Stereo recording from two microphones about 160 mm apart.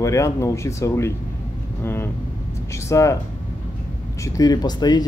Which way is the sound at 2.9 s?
20° left (ahead or behind).